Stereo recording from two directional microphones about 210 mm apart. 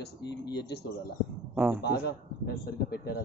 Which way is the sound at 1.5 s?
10° right (ahead or behind).